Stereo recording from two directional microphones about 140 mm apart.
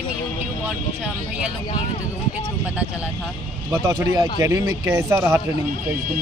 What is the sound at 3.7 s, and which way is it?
Speech, 25° right (ahead or behind).